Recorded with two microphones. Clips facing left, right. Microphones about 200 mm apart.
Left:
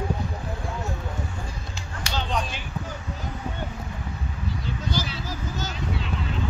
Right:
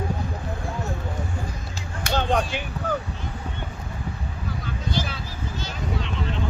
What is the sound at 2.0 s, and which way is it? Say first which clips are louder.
Music: right 6 dB; 55° right (ahead or behind).